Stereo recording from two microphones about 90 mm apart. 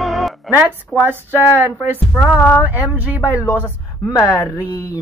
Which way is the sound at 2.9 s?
20° right (ahead or behind).